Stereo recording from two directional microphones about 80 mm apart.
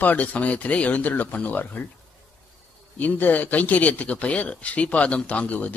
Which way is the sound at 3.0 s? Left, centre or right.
Left.